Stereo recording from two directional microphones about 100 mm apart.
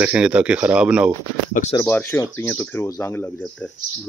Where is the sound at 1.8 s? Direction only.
20° left (ahead or behind).